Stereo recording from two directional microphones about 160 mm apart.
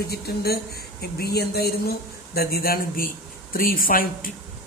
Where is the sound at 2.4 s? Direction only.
70° left (ahead or behind).